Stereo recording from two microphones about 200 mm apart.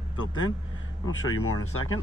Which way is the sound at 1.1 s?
90° left.